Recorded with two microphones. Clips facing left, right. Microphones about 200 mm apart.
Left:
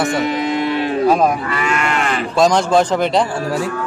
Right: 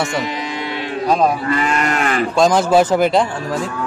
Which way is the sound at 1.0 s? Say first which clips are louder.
Left 1 dB; 5° left (ahead or behind).